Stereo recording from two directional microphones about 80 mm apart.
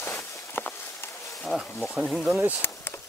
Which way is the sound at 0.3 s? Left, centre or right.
Left.